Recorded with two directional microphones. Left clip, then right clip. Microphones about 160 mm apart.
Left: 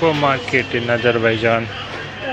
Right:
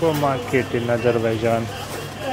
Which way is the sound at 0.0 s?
5° right (ahead or behind).